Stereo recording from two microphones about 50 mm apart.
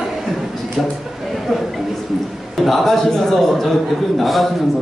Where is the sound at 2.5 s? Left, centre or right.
Centre.